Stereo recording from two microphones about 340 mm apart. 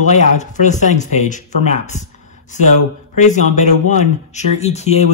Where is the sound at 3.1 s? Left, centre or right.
Left.